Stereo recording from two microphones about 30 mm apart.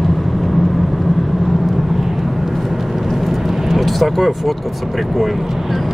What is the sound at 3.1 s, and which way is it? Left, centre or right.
Vehicle, centre.